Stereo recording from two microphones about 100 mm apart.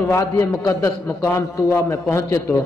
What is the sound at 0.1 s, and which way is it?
A man's voice, 30° left (ahead or behind).